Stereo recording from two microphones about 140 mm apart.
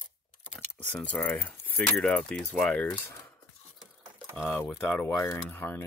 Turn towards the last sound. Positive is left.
turn(degrees=15)  # may be behind; listen again after turning